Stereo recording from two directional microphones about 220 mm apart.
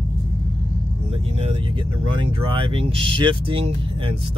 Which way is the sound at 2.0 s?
25° right (ahead or behind).